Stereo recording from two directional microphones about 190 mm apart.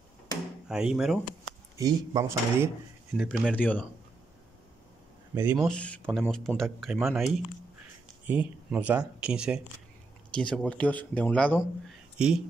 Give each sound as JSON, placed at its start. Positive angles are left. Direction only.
{"t": 0.7, "sound": "speech", "side_deg": -5}
{"t": 1.8, "sound": "speech", "side_deg": -20}
{"t": 3.2, "sound": "speech", "side_deg": 5}
{"t": 5.3, "sound": "speech", "side_deg": -10}
{"t": 5.7, "sound": "speech", "side_deg": 5}